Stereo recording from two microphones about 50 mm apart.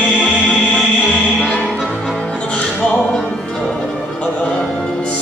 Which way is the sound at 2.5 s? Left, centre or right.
Centre.